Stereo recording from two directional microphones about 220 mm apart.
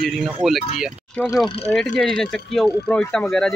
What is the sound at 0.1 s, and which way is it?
Speech, 5° right (ahead or behind).